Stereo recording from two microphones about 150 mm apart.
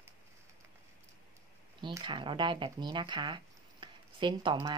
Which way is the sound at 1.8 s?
30° right (ahead or behind).